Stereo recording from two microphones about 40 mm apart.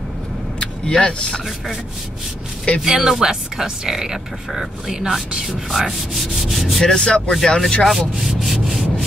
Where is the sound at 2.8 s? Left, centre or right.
Centre.